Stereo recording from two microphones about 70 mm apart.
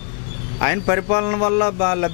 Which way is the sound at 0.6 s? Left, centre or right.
Left.